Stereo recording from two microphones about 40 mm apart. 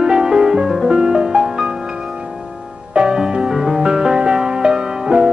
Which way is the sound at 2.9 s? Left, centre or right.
Centre.